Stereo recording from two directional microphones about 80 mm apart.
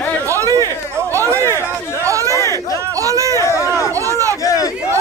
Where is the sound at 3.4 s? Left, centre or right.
Left.